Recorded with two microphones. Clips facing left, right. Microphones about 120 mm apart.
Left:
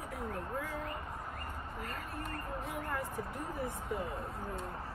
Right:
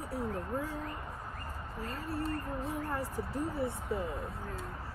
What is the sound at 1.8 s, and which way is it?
Speech, 30° right (ahead or behind).